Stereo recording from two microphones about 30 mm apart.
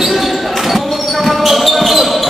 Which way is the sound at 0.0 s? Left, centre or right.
Centre.